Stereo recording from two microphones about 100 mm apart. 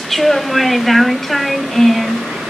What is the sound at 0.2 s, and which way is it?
Speech, centre (ahead or behind).